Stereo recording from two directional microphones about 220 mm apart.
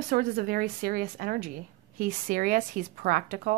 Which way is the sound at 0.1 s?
40° right (ahead or behind).